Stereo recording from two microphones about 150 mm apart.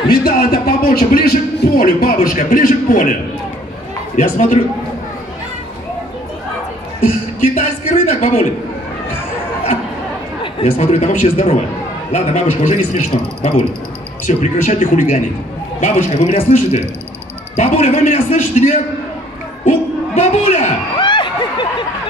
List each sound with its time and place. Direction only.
0.1 s a man's voice: 85° left; by 3.2 s 65° left (ahead or behind)
4.2 s a man's voice: 55° left (ahead or behind)
7.5 s speech: 50° left (ahead or behind)
10.4 s a man's voice: 45° left (ahead or behind)
20.2 s a man's voice: 50° left (ahead or behind)
21.0 s a sound: 30° left (ahead or behind)